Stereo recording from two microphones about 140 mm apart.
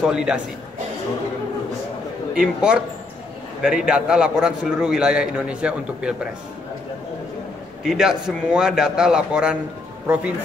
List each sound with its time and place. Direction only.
0.0 s a man's voice: 5° right (ahead or behind)
2.3 s a man's voice: 5° right (ahead or behind)
7.8 s a man's voice: 5° right (ahead or behind)